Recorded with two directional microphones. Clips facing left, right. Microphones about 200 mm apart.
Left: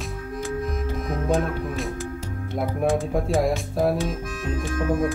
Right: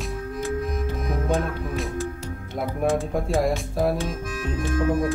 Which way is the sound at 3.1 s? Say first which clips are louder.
Left 1 dB; centre (ahead or behind).